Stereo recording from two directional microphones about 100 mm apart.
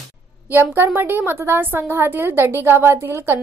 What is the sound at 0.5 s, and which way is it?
A woman's voice, 25° right (ahead or behind).